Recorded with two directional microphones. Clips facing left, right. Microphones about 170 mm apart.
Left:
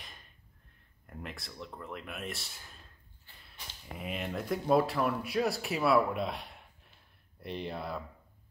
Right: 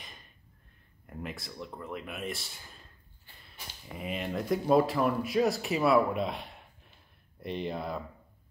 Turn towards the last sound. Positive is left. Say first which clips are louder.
# right 3 dB
turn(degrees=0)  # may be behind; listen again after turning